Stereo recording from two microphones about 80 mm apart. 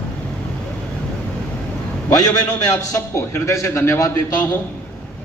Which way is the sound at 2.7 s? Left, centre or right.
Left.